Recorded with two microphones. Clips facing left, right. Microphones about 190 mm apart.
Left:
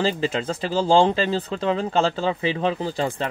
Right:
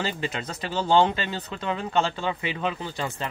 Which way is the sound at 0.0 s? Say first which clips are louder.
Left 7 dB; 30° left (ahead or behind).